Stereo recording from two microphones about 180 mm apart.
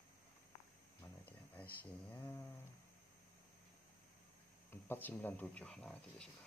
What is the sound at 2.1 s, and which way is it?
Speech, 10° left (ahead or behind).